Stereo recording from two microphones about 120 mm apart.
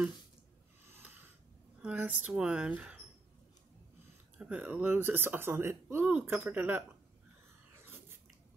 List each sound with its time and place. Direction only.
1.8 s speech: 10° right (ahead or behind)
4.4 s speech: 10° right (ahead or behind)
7.8 s a sound: 20° right (ahead or behind)